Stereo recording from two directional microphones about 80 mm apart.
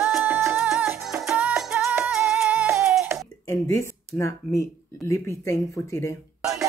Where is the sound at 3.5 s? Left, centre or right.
Left.